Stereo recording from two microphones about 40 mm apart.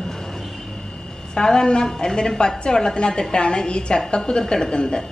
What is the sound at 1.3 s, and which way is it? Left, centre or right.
A woman's voice, centre.